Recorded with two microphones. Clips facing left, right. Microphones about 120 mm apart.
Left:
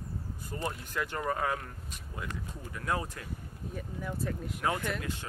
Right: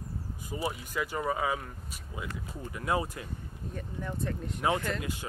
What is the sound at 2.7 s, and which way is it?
Speech, 10° right (ahead or behind).